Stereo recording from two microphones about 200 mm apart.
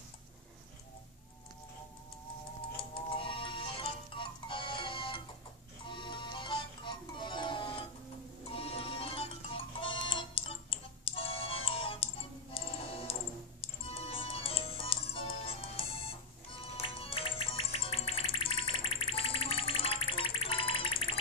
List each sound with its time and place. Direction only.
2.8 s music: 25° left (ahead or behind)